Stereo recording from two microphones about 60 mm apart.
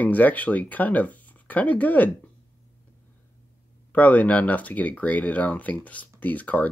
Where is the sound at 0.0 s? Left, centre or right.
Left.